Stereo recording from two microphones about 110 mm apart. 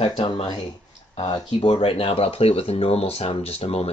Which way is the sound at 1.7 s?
55° left (ahead or behind).